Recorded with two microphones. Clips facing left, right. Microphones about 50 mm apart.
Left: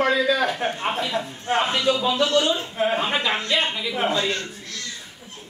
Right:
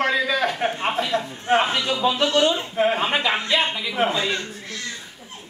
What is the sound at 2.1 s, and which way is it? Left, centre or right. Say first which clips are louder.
A man's voice: right 1 dB; right.